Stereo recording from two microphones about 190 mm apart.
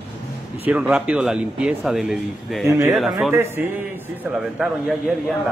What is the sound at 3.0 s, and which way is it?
Speech, centre (ahead or behind).